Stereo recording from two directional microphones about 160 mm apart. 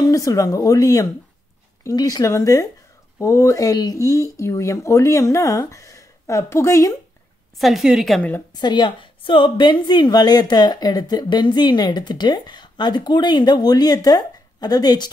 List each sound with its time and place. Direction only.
0.0 s a woman's voice: 20° left (ahead or behind)
7.5 s a woman's voice: centre (ahead or behind)
8.5 s a woman's voice: 30° left (ahead or behind)